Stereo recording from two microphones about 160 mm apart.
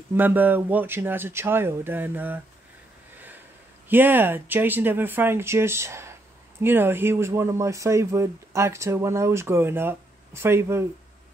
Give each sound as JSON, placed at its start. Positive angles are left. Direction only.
{"t": 0.1, "sound": "speech", "side_deg": -10}
{"t": 3.9, "sound": "speech", "side_deg": -10}